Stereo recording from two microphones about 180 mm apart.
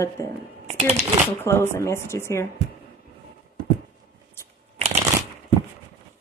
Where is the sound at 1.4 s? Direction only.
15° left (ahead or behind).